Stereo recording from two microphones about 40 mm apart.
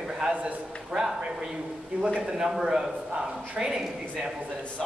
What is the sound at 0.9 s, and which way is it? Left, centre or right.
A man's voice, centre.